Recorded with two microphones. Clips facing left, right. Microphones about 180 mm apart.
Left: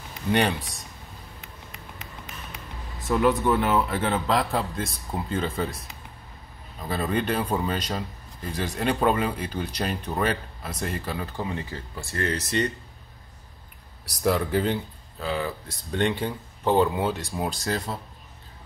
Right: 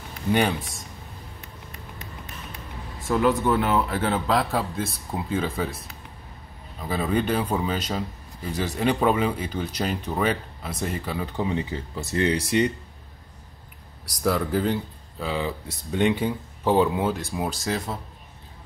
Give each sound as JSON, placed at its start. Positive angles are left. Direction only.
{"t": 0.3, "sound": "speech", "side_deg": 0}
{"t": 3.1, "sound": "speech", "side_deg": 0}
{"t": 6.8, "sound": "a man's voice", "side_deg": -5}
{"t": 11.4, "sound": "a man's voice", "side_deg": -20}
{"t": 14.2, "sound": "speech", "side_deg": 0}
{"t": 15.2, "sound": "a man's voice", "side_deg": -20}
{"t": 16.0, "sound": "speech", "side_deg": -5}